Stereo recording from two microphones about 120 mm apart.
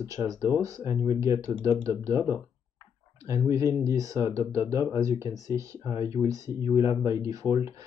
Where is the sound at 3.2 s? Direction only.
25° right (ahead or behind).